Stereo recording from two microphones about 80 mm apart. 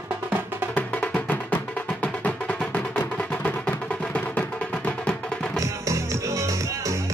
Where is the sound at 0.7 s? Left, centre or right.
Centre.